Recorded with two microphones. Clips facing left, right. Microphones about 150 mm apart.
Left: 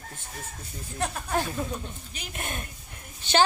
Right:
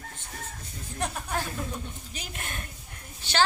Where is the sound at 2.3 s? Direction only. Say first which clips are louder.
Left 4 dB; 20° left (ahead or behind).